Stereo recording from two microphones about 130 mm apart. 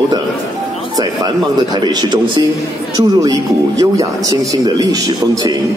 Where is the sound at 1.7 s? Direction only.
35° right (ahead or behind).